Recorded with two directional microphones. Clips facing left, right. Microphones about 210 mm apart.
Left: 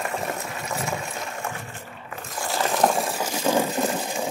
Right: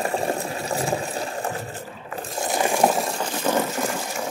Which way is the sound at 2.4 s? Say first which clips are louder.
Right 2 dB; 15° right (ahead or behind).